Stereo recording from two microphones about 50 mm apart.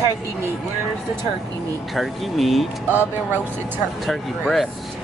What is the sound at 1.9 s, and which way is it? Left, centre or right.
Speech, centre.